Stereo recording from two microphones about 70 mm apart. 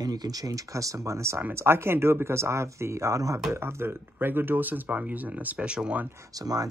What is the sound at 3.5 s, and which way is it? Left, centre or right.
Speech, right.